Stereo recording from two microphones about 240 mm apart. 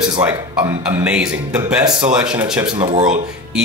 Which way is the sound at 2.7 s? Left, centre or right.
Centre.